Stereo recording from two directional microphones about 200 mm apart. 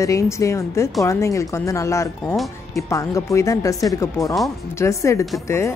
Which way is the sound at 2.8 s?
15° left (ahead or behind).